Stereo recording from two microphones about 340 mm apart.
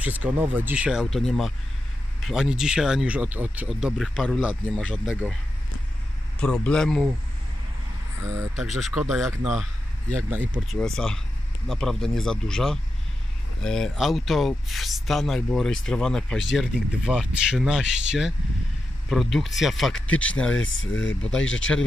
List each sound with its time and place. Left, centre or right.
0.0 s speech: centre
6.4 s speech: centre
8.2 s speech: centre
20.5 s speech: left
21.2 s speech: centre